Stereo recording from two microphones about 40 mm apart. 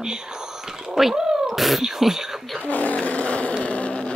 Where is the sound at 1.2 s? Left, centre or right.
Centre.